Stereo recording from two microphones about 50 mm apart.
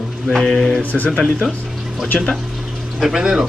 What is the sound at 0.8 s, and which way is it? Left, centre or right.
Speech, left.